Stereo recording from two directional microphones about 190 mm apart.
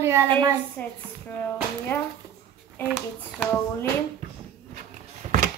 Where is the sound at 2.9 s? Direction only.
Centre (ahead or behind).